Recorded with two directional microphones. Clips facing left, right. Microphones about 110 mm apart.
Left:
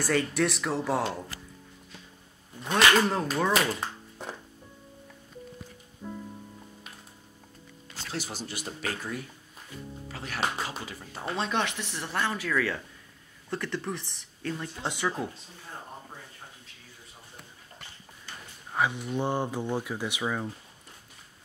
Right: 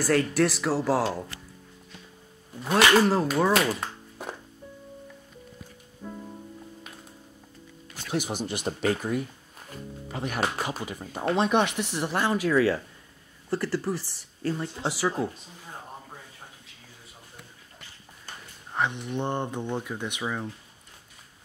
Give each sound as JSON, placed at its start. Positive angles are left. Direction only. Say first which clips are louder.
{"t": 0.0, "sound": "speech", "louder": "right 4 dB", "side_deg": 0}
{"t": 2.6, "sound": "speech", "louder": "right 3 dB", "side_deg": -5}
{"t": 8.1, "sound": "speech", "louder": "right 7 dB", "side_deg": -15}
{"t": 13.5, "sound": "speech", "louder": "right 5 dB", "side_deg": -5}
{"t": 18.7, "sound": "speech", "louder": "even", "side_deg": 5}